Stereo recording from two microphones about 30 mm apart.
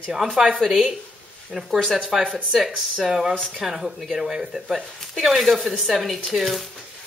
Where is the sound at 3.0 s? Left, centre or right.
Centre.